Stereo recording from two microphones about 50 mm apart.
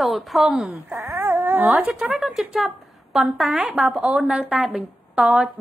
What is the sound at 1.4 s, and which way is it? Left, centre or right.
Dog, right.